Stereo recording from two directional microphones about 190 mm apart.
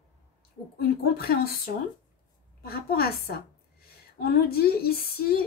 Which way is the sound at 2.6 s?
55° left (ahead or behind).